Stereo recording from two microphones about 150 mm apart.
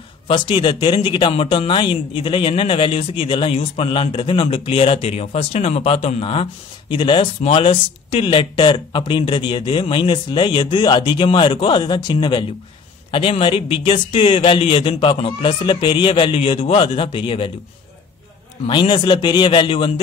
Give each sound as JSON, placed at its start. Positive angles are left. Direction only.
{"t": 0.3, "sound": "speech", "side_deg": 35}
{"t": 18.7, "sound": "speech", "side_deg": 30}